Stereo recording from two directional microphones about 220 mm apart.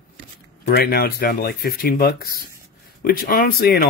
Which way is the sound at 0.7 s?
50° left (ahead or behind).